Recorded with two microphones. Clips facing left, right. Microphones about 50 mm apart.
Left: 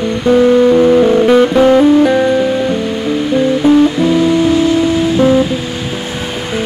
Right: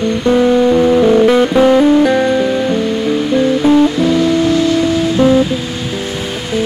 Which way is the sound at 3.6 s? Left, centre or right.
Left.